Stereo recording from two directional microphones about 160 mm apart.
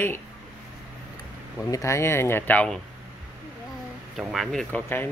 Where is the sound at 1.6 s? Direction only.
20° left (ahead or behind).